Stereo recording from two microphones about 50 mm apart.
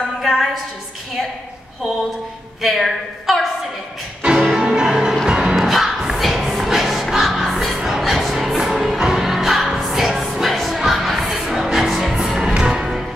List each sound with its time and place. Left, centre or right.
0.2 s a sound: centre
2.6 s a woman's voice: centre
4.6 s music: centre
5.6 s music: centre